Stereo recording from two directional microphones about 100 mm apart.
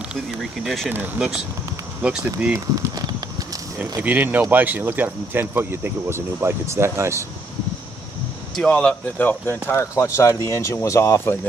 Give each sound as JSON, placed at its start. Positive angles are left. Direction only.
{"t": 0.4, "sound": "speech", "side_deg": 0}
{"t": 0.8, "sound": "speech", "side_deg": -15}
{"t": 2.5, "sound": "a sound", "side_deg": -35}
{"t": 4.0, "sound": "speech", "side_deg": -20}
{"t": 8.5, "sound": "speech", "side_deg": 10}
{"t": 9.7, "sound": "speech", "side_deg": 30}